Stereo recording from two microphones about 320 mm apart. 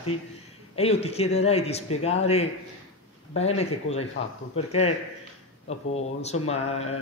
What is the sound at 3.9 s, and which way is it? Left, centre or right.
Speech, left.